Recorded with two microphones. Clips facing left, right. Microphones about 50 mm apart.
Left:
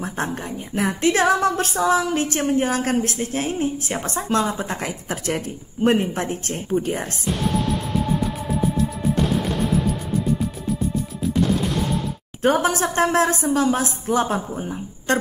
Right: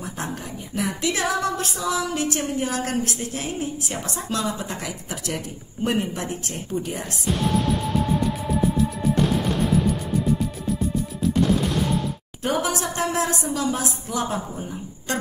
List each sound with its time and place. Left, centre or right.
0.0 s speech: left
12.4 s speech: left